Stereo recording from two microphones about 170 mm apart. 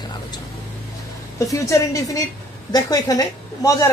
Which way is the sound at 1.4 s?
20° left (ahead or behind).